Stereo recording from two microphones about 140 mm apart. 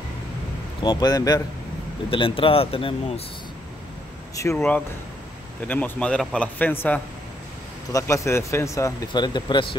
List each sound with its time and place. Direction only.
0.8 s speech: 30° left (ahead or behind)
2.0 s speech: 40° left (ahead or behind)
4.4 s a man's voice: 20° left (ahead or behind)